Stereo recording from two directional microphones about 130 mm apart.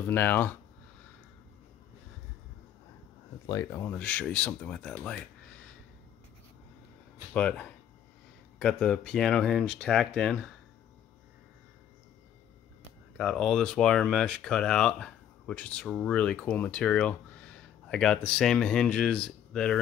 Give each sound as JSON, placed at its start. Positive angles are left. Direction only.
{"t": 0.0, "sound": "speech", "side_deg": 15}
{"t": 3.4, "sound": "speech", "side_deg": 25}
{"t": 3.8, "sound": "speech", "side_deg": 10}
{"t": 7.3, "sound": "speech", "side_deg": 10}
{"t": 13.2, "sound": "speech", "side_deg": 5}